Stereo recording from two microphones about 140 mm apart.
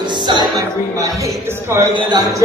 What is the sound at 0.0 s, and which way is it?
Speech, 30° right (ahead or behind).